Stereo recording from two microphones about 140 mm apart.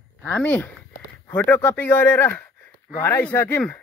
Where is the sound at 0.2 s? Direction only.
10° left (ahead or behind).